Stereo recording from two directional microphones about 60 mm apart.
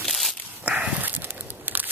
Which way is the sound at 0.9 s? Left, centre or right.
Right.